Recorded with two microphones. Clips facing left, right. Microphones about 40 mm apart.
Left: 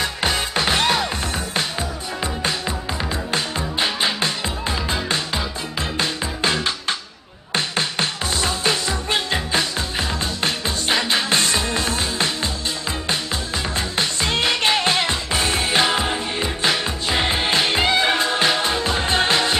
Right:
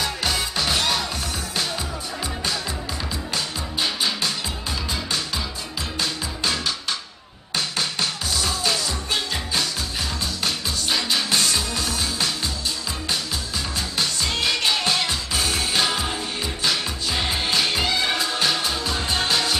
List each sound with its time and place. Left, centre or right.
0.0 s music: left
3.3 s music: left
13.7 s music: left